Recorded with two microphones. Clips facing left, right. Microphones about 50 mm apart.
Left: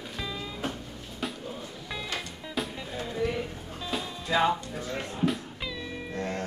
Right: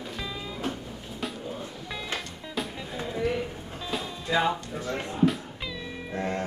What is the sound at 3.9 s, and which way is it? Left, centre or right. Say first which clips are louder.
Music: right 1 dB; centre.